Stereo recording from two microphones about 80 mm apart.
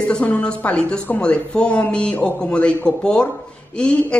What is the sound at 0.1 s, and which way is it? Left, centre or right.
Speech, centre.